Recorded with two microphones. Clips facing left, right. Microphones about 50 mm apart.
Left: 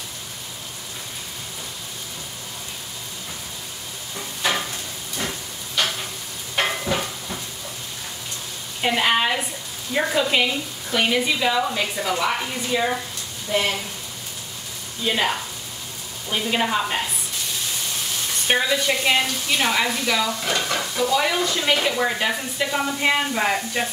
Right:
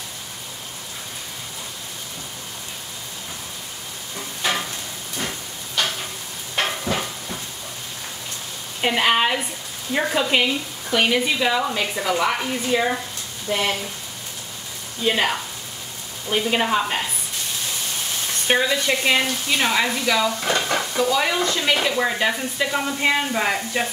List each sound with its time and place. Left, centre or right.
4.4 s stir: centre
6.5 s a sound: centre
8.8 s a woman's voice: centre
15.0 s a woman's voice: centre
18.5 s a woman's voice: centre
20.1 s stir: centre
21.5 s speech: centre